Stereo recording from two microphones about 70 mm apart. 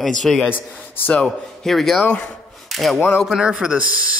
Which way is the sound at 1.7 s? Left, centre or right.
Centre.